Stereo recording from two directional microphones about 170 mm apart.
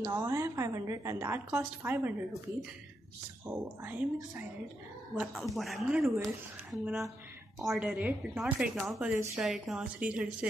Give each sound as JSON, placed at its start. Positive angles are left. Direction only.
{"t": 0.0, "sound": "a woman's voice", "side_deg": -15}
{"t": 3.4, "sound": "a woman's voice", "side_deg": -10}